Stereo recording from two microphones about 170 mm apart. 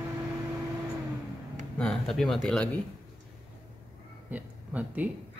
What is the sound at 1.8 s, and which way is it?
Speech, 5° left (ahead or behind).